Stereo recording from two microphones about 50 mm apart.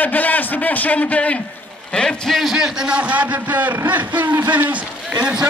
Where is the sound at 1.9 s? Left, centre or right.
Centre.